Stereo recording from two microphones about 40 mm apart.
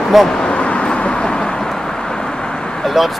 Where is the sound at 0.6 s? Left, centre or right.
Left.